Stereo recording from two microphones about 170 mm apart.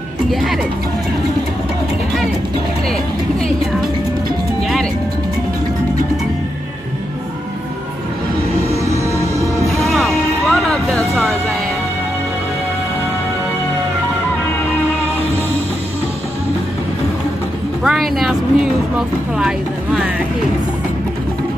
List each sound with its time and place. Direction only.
0.3 s speech: centre (ahead or behind)
8.7 s music: 15° right (ahead or behind)
9.8 s music: centre (ahead or behind)
17.8 s speech: centre (ahead or behind)